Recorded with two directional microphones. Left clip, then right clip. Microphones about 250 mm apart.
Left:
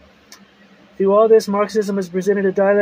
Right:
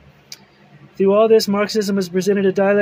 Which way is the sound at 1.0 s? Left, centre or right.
Centre.